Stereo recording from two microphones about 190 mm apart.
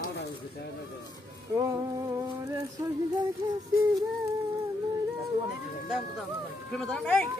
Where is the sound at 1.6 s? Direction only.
15° right (ahead or behind).